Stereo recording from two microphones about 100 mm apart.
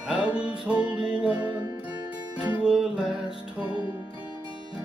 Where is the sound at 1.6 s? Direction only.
40° right (ahead or behind).